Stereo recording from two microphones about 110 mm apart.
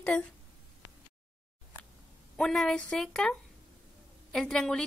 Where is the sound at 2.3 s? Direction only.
5° left (ahead or behind).